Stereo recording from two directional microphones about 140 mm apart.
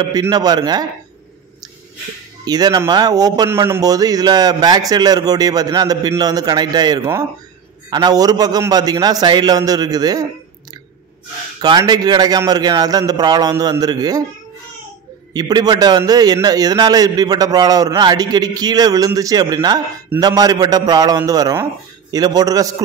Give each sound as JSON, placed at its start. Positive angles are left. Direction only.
{"t": 0.3, "sound": "a man's voice", "side_deg": -30}
{"t": 2.4, "sound": "a man's voice", "side_deg": -30}
{"t": 3.4, "sound": "a man's voice", "side_deg": -15}
{"t": 11.6, "sound": "a man's voice", "side_deg": -30}
{"t": 15.3, "sound": "a man's voice", "side_deg": -30}